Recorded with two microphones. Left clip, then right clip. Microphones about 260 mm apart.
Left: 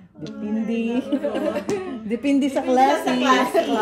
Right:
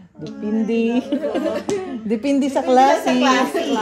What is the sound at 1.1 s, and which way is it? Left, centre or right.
Speech, centre.